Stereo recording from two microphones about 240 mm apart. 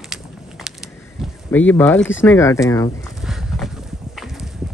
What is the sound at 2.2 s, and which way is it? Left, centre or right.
Speech, centre.